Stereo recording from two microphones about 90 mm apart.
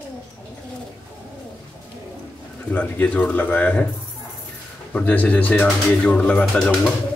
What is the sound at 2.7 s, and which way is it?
Speech, 15° left (ahead or behind).